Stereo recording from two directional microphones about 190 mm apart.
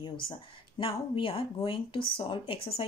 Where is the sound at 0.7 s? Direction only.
25° left (ahead or behind).